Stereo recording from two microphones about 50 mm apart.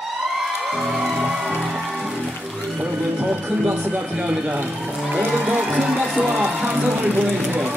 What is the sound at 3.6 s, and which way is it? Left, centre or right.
Speech, right.